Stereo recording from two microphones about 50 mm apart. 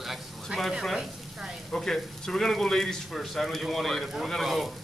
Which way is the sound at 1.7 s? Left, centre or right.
Centre.